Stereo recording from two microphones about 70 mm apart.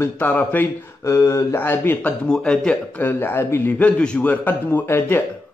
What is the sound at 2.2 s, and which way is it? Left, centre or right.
Speech, centre.